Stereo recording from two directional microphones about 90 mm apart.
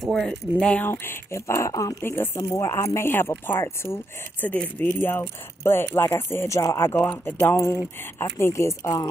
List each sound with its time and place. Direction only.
0.1 s speech: 10° left (ahead or behind)
0.8 s speech: 25° left (ahead or behind)
2.0 s speech: 30° left (ahead or behind)
7.0 s speech: 20° left (ahead or behind)
7.3 s speech: 30° left (ahead or behind)